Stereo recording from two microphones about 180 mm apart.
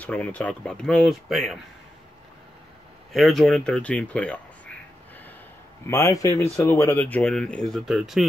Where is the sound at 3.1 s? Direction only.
Centre (ahead or behind).